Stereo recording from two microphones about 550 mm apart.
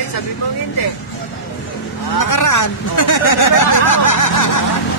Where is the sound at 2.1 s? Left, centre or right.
Left.